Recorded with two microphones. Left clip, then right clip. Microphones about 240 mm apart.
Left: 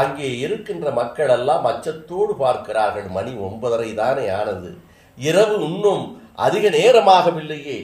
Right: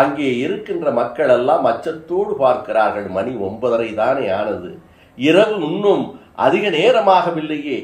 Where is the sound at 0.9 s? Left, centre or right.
Left.